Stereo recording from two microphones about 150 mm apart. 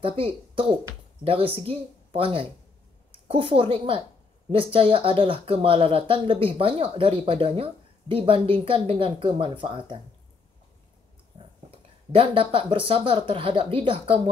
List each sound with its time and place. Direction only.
0.0 s a woman's voice: 40° right (ahead or behind)
11.7 s speech: 35° right (ahead or behind)